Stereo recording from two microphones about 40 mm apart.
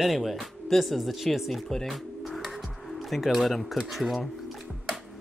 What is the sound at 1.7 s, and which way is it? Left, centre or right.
Music, centre.